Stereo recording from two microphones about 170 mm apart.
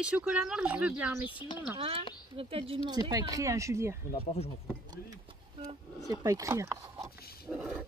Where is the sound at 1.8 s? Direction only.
35° right (ahead or behind).